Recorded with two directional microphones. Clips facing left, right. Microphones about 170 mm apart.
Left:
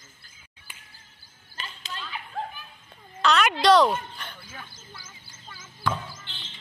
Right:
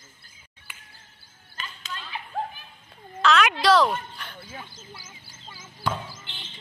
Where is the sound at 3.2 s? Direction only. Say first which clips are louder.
Right 1 dB; centre (ahead or behind).